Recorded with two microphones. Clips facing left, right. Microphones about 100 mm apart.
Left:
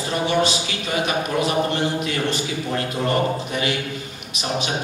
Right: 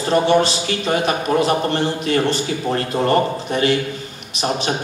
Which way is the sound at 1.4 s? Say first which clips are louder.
Right 3 dB; 40° right (ahead or behind).